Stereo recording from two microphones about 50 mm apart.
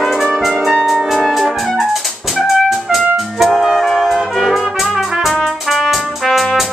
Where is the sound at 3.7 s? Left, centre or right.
Centre.